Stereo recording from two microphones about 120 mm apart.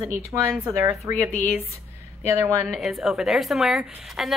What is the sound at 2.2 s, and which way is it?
Speech, 25° right (ahead or behind).